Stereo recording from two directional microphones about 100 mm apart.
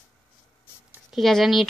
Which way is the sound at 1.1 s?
Centre (ahead or behind).